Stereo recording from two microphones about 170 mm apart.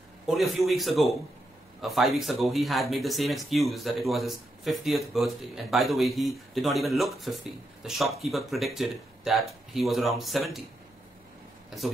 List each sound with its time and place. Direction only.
0.5 s speech: centre (ahead or behind)